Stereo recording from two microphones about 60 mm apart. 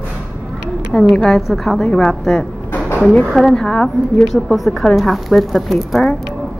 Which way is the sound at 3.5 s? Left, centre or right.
Centre.